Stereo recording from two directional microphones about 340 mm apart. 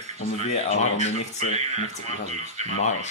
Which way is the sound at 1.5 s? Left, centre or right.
Centre.